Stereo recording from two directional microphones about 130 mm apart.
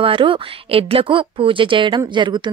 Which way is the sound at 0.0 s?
40° right (ahead or behind).